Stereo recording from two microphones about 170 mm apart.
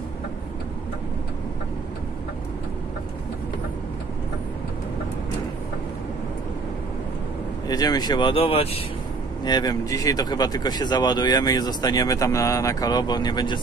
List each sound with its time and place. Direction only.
7.6 s speech: 20° left (ahead or behind)
9.4 s speech: 25° left (ahead or behind)